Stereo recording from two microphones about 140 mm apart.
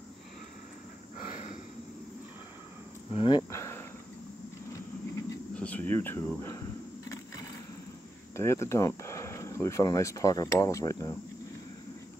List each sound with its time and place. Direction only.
1.1 s a sound: 65° left (ahead or behind)
3.1 s speech: 40° left (ahead or behind)
3.5 s cricket: 20° left (ahead or behind)
5.5 s speech: 10° left (ahead or behind)
8.4 s speech: 20° left (ahead or behind)